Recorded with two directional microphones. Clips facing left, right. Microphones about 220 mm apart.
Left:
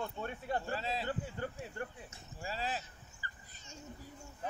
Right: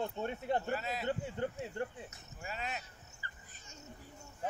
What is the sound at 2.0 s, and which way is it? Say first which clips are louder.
Speech: left 2 dB; 30° left (ahead or behind).